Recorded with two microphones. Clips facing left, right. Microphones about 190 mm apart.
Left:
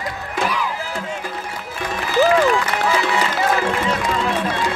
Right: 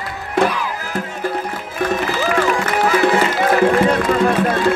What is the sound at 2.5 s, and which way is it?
Music, 50° right (ahead or behind).